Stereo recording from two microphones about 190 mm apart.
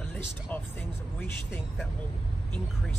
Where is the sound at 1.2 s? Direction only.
10° left (ahead or behind).